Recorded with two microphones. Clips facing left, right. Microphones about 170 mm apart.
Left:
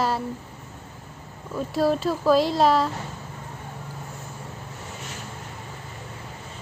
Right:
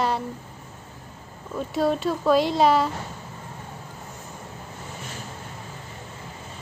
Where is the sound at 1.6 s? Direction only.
Centre (ahead or behind).